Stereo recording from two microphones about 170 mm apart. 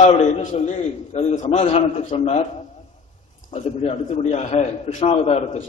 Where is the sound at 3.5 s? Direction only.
40° left (ahead or behind).